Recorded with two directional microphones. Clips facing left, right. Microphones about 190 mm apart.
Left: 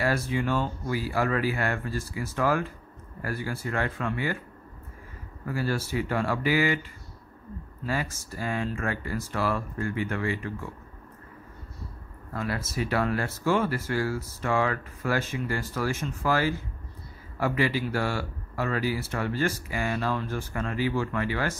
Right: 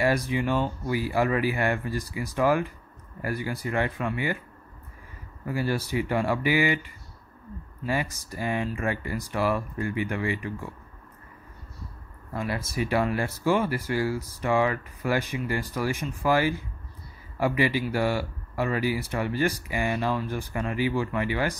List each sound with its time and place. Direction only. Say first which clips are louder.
0.0 s speech: right 2 dB; 15° right (ahead or behind)
5.4 s speech: right 1 dB; 15° right (ahead or behind)
12.3 s speech: right 1 dB; 15° right (ahead or behind)